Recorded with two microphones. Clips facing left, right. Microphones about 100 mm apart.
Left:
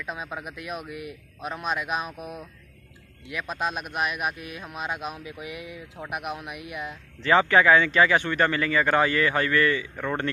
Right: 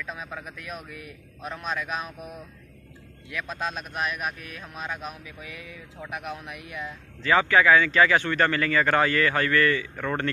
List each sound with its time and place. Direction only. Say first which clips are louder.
0.0 s a man's voice: left 2 dB; 15° left (ahead or behind)
7.2 s speech: left 1 dB; 30° left (ahead or behind)